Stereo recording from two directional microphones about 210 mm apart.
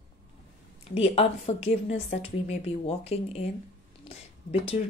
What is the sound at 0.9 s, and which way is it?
Speech, 30° left (ahead or behind).